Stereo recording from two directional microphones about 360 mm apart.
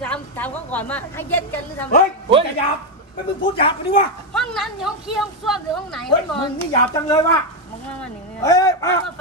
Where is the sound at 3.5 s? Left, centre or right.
Centre.